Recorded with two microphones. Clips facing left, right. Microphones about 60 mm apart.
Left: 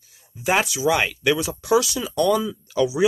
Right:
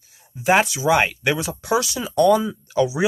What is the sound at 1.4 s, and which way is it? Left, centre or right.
Speech, centre.